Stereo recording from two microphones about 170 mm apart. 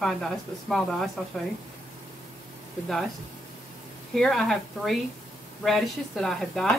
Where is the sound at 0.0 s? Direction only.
Centre (ahead or behind).